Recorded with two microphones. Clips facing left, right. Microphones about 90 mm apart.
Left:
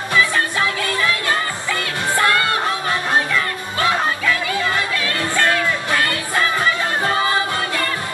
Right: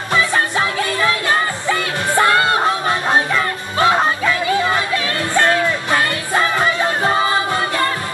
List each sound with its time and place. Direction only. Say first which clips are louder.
0.1 s music: right 2 dB; 25° right (ahead or behind)